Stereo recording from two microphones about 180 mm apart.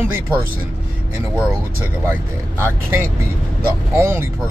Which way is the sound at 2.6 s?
15° right (ahead or behind).